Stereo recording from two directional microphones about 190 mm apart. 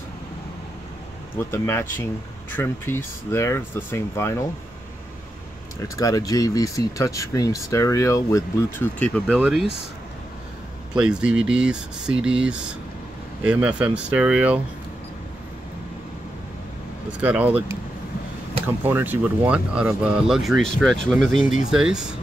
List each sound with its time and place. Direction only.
1.4 s speech: 10° left (ahead or behind)
5.8 s speech: 20° left (ahead or behind)
9.4 s speech: 5° right (ahead or behind)
10.9 s speech: 5° right (ahead or behind)
17.2 s speech: 10° right (ahead or behind)
18.8 s speech: 10° right (ahead or behind)